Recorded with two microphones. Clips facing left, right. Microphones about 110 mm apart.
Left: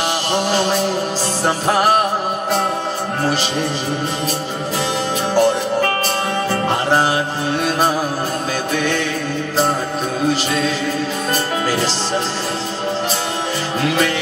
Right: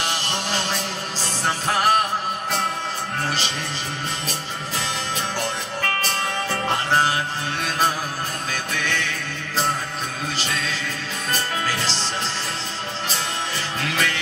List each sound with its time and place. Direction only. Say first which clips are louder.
0.3 s mantra: left 9 dB; 15° left (ahead or behind)
1.4 s music: left 5 dB; 15° left (ahead or behind)
5.3 s music: left 12 dB; 20° left (ahead or behind)
8.7 s music: left 8 dB; 15° left (ahead or behind)
13.8 s music: left 8 dB; 20° left (ahead or behind)